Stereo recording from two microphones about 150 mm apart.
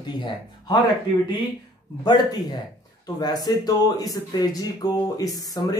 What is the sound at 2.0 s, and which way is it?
Speech, 25° left (ahead or behind).